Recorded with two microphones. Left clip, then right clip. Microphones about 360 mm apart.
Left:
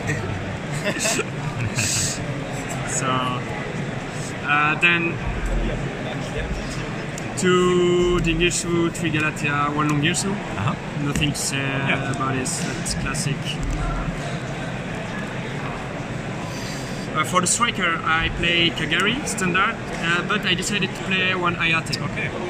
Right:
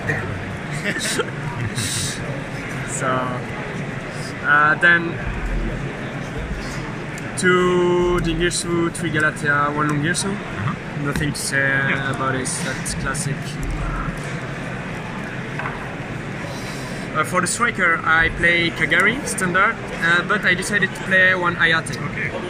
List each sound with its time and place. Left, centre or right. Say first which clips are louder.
4.5 s speech: right 4 dB; centre
7.4 s speech: right 2 dB; centre
11.1 s speech: right 4 dB; centre
17.2 s speech: right 1 dB; centre